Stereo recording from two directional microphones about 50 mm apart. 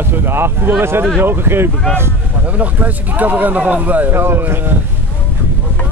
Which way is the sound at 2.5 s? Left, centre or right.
Right.